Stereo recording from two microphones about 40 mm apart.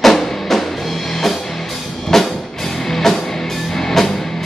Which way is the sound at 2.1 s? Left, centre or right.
Centre.